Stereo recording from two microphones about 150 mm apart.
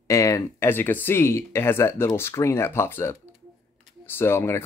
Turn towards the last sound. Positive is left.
turn(degrees=15)  # may be behind; listen again after turning